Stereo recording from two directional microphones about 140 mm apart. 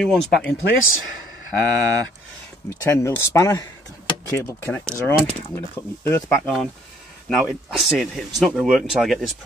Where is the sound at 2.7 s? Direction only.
20° left (ahead or behind).